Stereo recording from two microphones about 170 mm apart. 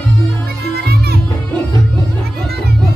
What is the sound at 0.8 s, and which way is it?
Music, 70° right (ahead or behind).